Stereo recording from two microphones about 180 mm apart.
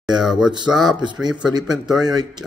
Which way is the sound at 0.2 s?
Centre (ahead or behind).